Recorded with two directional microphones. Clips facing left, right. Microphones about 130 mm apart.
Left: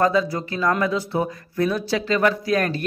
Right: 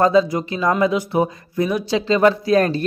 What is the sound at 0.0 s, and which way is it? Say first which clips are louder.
Speech: right 4 dB; 25° right (ahead or behind).